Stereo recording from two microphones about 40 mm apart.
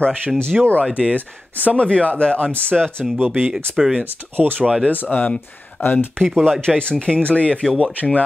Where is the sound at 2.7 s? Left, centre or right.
Centre.